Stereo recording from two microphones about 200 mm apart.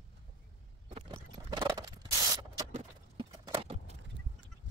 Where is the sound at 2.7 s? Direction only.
20° right (ahead or behind).